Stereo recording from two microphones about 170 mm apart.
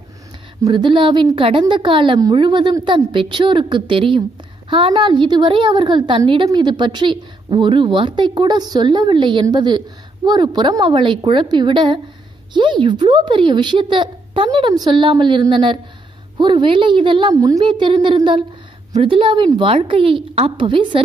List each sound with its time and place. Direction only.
0.6 s a woman's voice: 25° right (ahead or behind)